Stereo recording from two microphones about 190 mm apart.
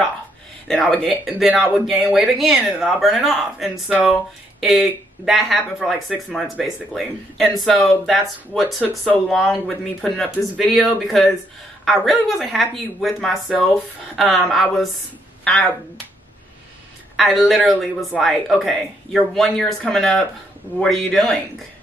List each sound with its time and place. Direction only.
0.7 s speech: 5° left (ahead or behind)
17.2 s speech: centre (ahead or behind)